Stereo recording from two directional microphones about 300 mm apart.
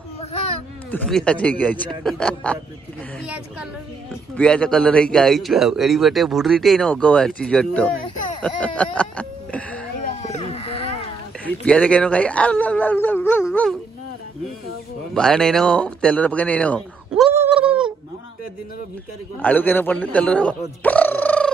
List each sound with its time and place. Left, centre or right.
0.9 s a man's voice: centre
4.1 s a man's voice: centre
8.4 s a sound: centre
10.0 s a sound: left
11.4 s speech: centre
15.1 s speech: centre
19.4 s a man's voice: centre